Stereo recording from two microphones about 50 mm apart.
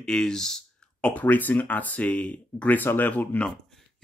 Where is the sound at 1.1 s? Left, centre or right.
Left.